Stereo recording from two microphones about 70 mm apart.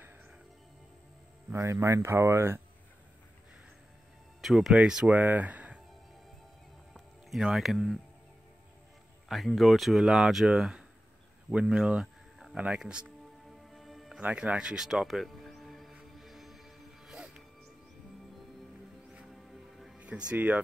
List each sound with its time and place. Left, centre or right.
1.5 s speech: right
4.4 s speech: centre
5.1 s speech: right
6.9 s music: centre
9.3 s speech: centre
11.5 s a sound: centre
12.5 s speech: centre
13.5 s music: centre
14.2 s speech: centre
15.9 s music: centre
19.2 s music: centre
20.0 s speech: centre